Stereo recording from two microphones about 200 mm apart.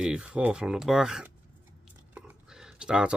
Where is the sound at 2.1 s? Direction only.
5° right (ahead or behind).